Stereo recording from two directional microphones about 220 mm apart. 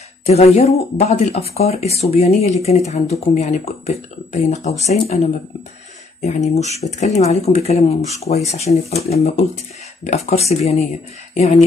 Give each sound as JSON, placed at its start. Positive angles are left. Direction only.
{"t": 0.3, "sound": "speech", "side_deg": 30}